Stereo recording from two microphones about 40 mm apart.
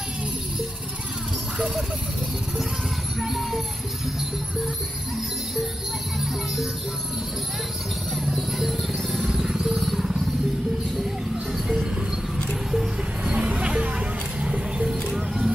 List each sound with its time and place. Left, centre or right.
3.2 s music: centre
6.1 s speech: centre
8.3 s music: centre
9.3 s music: centre
9.8 s music: centre
12.7 s music: centre
13.4 s music: right
15.1 s music: centre